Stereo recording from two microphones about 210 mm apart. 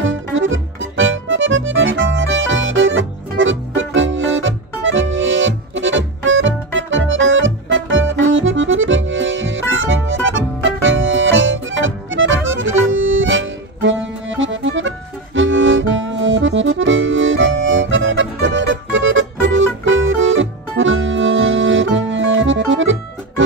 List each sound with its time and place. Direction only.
0.0 s accordion: 65° right (ahead or behind)